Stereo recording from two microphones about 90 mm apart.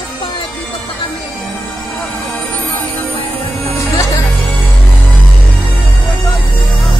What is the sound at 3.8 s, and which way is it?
Music, 35° left (ahead or behind).